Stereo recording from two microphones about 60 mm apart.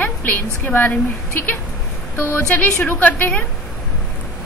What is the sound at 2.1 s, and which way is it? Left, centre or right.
A woman's voice, left.